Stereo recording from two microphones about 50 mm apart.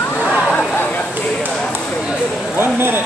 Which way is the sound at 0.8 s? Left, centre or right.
Left.